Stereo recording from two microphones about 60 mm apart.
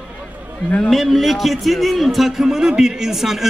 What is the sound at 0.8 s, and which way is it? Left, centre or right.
A man's voice, centre.